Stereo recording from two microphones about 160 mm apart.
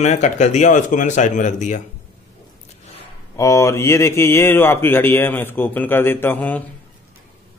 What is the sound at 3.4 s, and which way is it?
Speech, 20° left (ahead or behind).